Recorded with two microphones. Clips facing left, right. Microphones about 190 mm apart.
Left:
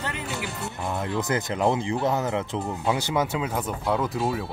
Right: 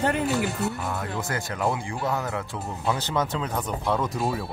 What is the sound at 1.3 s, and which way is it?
Speech, 20° left (ahead or behind).